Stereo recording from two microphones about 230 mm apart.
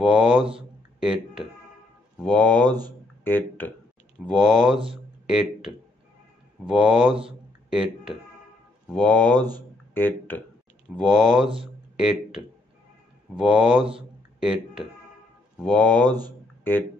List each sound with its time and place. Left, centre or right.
0.0 s a sound: centre
2.1 s speech: centre
4.7 s speech: right
6.6 s speech: centre
7.2 s a sound: centre
8.8 s speech: centre